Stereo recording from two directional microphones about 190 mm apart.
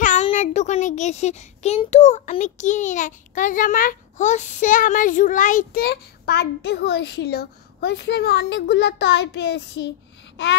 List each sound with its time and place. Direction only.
0.0 s a child's voice: 35° left (ahead or behind); by 10.5 s 65° left (ahead or behind)